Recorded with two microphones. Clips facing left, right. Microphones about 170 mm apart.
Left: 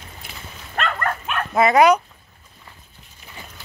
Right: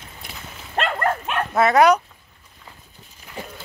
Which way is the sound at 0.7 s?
30° right (ahead or behind).